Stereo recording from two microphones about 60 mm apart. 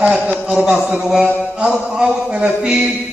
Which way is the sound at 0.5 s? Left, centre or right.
Centre.